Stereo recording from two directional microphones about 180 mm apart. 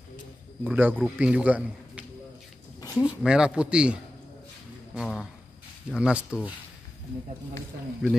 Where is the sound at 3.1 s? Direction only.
5° right (ahead or behind).